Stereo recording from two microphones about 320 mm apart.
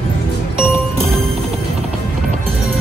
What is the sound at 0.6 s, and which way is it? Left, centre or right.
Music, centre.